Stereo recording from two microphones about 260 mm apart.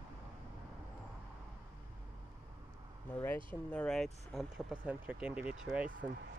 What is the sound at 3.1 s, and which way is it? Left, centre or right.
Speech, centre.